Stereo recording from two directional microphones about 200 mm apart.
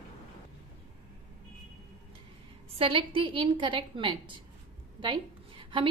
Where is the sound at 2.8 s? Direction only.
25° right (ahead or behind).